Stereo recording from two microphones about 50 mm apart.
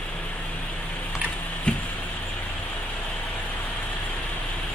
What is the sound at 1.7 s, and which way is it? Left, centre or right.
Vehicle, left.